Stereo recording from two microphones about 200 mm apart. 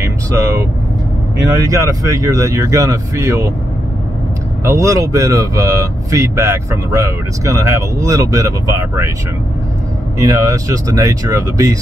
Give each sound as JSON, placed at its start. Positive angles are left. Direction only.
{"t": 1.4, "sound": "speech", "side_deg": -15}
{"t": 4.6, "sound": "speech", "side_deg": -15}
{"t": 10.1, "sound": "speech", "side_deg": -15}